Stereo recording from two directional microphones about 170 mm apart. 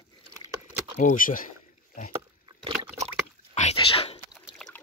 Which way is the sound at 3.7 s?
35° left (ahead or behind).